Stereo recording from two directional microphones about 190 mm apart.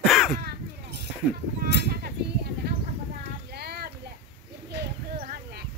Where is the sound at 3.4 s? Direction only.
55° right (ahead or behind).